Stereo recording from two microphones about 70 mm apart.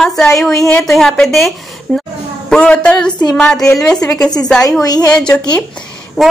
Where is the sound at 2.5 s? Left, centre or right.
Centre.